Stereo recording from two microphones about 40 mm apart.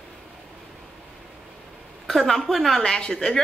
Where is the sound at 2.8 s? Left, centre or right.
Centre.